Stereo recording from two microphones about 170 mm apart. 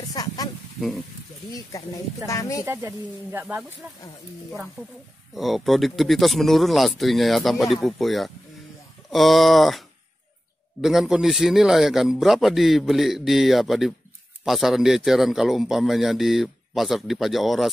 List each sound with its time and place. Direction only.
0.1 s a sound: 20° left (ahead or behind)
0.7 s speech: centre (ahead or behind)
2.2 s speech: 20° left (ahead or behind)
2.6 s speech: 15° right (ahead or behind)
5.3 s a man's voice: centre (ahead or behind)